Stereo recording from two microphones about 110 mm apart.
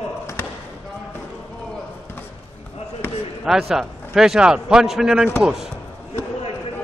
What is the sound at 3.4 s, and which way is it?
A man's voice, centre (ahead or behind).